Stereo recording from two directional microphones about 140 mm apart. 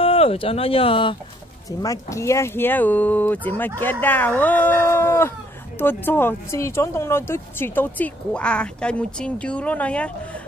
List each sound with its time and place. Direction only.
0.0 s speech: 45° left (ahead or behind)
1.7 s speech: 25° left (ahead or behind); by 10.1 s 10° left (ahead or behind)